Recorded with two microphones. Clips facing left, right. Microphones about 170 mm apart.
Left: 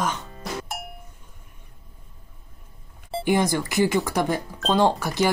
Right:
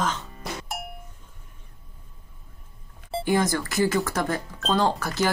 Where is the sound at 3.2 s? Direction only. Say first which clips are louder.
Left 2 dB; 15° left (ahead or behind).